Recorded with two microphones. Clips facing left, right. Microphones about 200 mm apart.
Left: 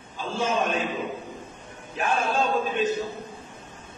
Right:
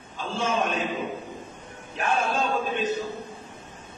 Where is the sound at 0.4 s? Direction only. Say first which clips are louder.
Left 1 dB; centre (ahead or behind).